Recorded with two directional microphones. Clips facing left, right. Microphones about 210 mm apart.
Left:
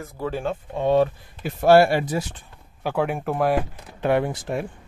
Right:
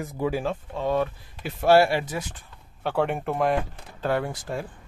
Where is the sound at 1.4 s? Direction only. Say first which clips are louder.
Left 3 dB; 45° left (ahead or behind).